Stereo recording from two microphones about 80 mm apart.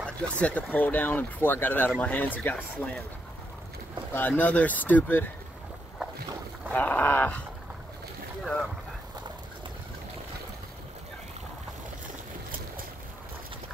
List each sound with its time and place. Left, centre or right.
0.0 s speech: centre
4.1 s speech: left
6.7 s speech: left